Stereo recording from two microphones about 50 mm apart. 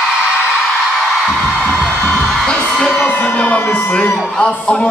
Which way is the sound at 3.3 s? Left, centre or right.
Left.